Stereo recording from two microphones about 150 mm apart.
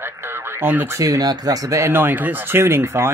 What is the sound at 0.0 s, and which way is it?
Speech, 15° right (ahead or behind).